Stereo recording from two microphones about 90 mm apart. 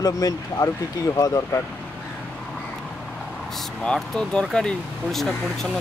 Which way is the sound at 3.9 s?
10° left (ahead or behind).